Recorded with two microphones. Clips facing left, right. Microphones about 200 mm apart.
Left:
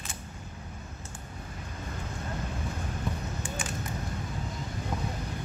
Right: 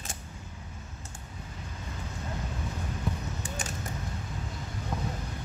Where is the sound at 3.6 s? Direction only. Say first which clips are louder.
Left 2 dB; 40° right (ahead or behind).